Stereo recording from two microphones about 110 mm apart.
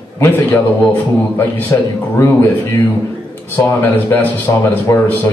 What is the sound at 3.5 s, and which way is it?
Speech, 15° left (ahead or behind).